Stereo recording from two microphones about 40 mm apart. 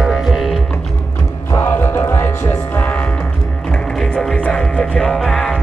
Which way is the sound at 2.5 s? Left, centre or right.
Left.